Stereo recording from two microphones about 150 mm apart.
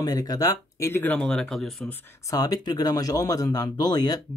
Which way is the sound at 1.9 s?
25° left (ahead or behind).